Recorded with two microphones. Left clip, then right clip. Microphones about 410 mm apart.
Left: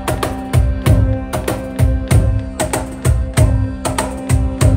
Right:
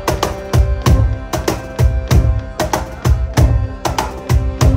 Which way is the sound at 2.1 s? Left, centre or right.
Centre.